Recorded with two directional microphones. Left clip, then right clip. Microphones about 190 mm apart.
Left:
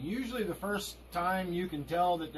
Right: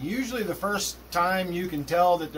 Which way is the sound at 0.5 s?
15° right (ahead or behind).